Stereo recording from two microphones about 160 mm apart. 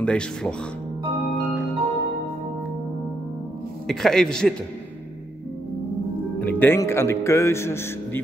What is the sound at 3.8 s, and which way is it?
Speech, 5° left (ahead or behind).